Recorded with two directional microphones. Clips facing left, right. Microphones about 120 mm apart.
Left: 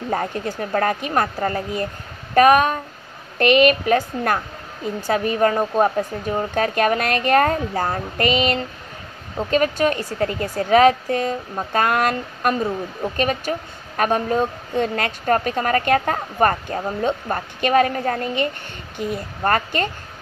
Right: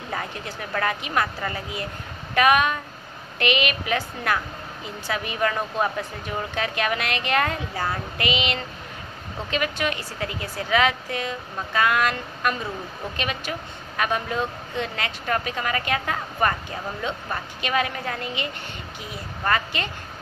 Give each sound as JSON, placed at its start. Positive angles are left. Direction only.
{"t": 0.1, "sound": "a woman's voice", "side_deg": 40}